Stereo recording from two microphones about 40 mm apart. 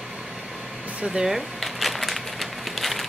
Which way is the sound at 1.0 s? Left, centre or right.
Centre.